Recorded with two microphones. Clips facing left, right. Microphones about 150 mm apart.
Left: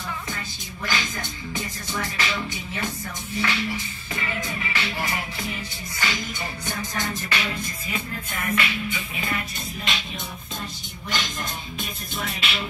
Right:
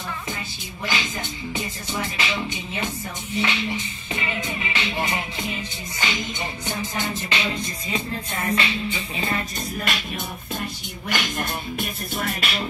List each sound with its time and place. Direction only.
0.8 s music: 15° right (ahead or behind); by 9.4 s 30° right (ahead or behind)
10.6 s music: 65° right (ahead or behind); by 12.6 s 45° right (ahead or behind)